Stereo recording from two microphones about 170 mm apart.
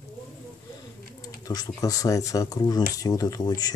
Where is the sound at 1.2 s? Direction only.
20° left (ahead or behind).